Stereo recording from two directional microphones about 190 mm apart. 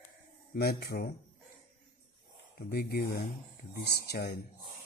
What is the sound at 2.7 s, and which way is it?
Speech, 55° left (ahead or behind).